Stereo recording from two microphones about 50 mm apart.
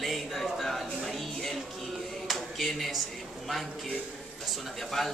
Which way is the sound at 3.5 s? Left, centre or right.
Centre.